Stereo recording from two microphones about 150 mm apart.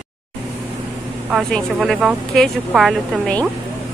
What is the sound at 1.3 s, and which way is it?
Speech, centre (ahead or behind).